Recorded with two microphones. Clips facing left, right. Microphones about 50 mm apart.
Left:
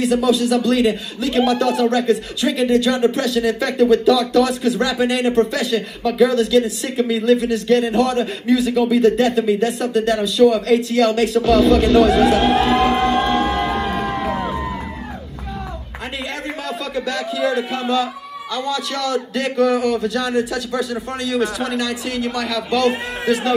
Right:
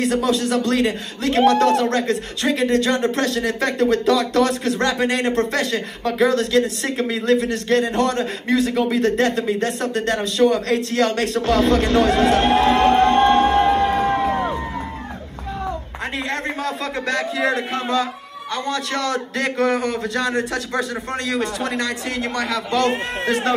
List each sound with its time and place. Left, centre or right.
0.0 s a man's voice: right
13.1 s music: right
13.8 s crowd: right
16.3 s a man's voice: right